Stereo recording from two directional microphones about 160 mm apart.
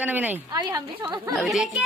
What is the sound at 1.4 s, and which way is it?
Speech, centre (ahead or behind).